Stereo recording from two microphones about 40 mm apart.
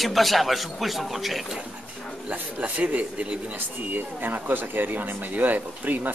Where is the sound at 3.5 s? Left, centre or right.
Right.